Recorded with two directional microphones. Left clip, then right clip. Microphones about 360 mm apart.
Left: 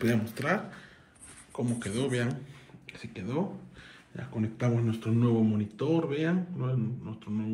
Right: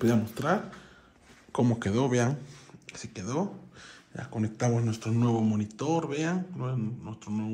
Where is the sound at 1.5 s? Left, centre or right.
Centre.